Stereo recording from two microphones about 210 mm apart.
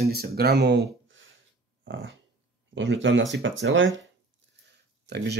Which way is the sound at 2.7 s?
60° right (ahead or behind).